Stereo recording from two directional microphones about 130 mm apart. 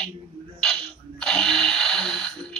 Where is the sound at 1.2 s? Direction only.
5° left (ahead or behind).